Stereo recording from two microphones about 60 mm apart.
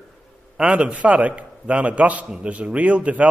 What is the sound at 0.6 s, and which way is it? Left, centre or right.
A man's voice, centre.